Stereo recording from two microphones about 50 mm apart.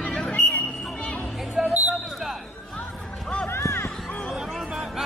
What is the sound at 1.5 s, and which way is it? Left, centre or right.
Music, right.